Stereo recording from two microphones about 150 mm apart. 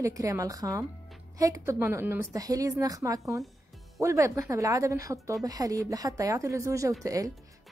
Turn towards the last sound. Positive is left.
turn(degrees=-20)  # may be behind; listen again after turning